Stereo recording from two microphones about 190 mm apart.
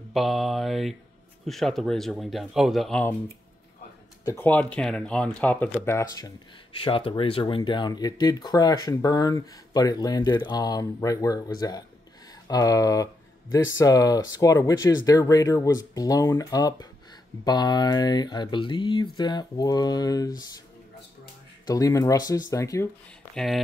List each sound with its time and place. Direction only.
0.1 s speech: centre (ahead or behind)
4.2 s speech: 15° left (ahead or behind)
6.8 s speech: 30° left (ahead or behind)
21.6 s speech: 20° left (ahead or behind)
23.3 s speech: centre (ahead or behind)